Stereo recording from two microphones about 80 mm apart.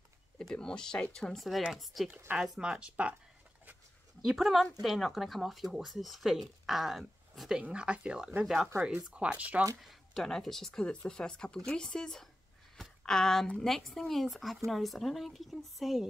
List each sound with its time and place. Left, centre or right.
0.4 s speech: centre
2.0 s speech: right
2.3 s speech: centre
4.2 s speech: centre
9.8 s speech: centre